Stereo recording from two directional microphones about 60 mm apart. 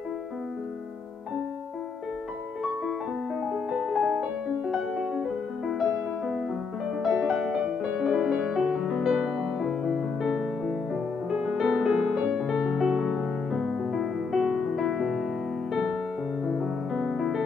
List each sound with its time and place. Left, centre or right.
3.9 s music: centre
7.0 s music: centre
7.5 s music: centre
8.9 s music: centre
17.0 s music: centre